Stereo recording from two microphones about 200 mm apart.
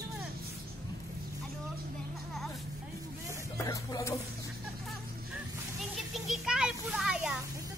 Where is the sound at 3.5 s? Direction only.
15° left (ahead or behind).